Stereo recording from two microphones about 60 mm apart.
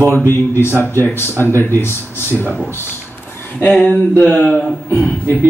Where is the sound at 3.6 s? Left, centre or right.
Left.